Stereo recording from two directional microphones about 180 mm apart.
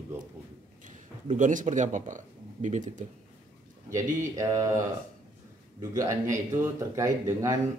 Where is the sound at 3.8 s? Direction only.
15° right (ahead or behind).